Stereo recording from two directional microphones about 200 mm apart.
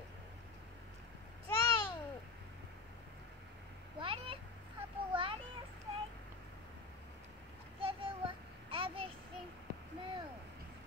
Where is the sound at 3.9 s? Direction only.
25° right (ahead or behind).